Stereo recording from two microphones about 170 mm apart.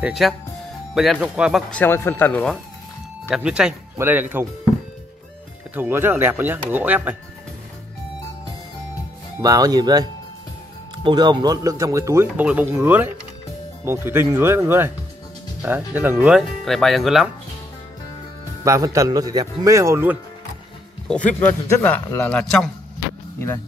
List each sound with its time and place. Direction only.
0.0 s speech: centre (ahead or behind)
1.7 s speech: 10° left (ahead or behind)
3.3 s speech: 5° right (ahead or behind)
5.8 s speech: 10° right (ahead or behind)
9.4 s a man's voice: 20° right (ahead or behind)
11.1 s speech: 25° right (ahead or behind); by 17.3 s centre (ahead or behind)
18.6 s a man's voice: 20° right (ahead or behind)
21.1 s speech: 5° left (ahead or behind)